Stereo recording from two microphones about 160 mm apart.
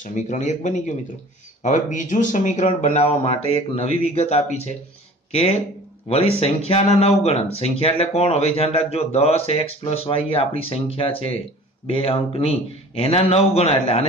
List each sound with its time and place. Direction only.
0.0 s a man's voice: 50° left (ahead or behind)